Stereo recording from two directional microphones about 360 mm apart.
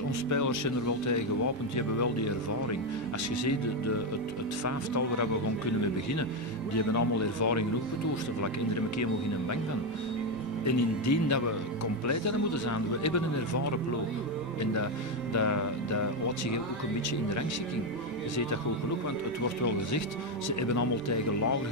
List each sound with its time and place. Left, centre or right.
0.3 s speech: left
4.6 s speech: left
6.7 s speech: left
10.6 s speech: left
15.3 s speech: left
20.6 s speech: left